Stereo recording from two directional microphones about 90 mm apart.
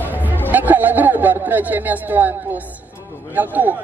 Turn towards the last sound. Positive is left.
turn(degrees=-20)  # may be behind; listen again after turning